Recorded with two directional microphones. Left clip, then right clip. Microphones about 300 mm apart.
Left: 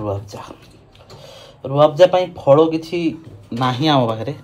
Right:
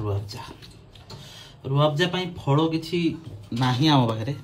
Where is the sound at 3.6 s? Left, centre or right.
Centre.